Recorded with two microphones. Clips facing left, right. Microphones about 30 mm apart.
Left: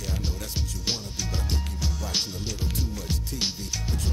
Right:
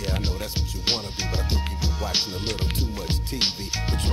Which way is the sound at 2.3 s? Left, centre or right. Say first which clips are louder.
Right 4 dB; right.